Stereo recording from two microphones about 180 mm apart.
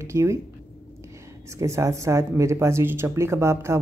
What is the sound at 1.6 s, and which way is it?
Speech, 15° right (ahead or behind).